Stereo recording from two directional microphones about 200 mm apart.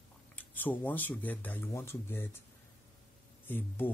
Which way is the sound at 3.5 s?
10° left (ahead or behind).